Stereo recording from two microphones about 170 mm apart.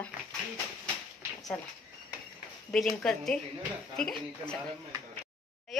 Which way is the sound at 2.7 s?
5° left (ahead or behind).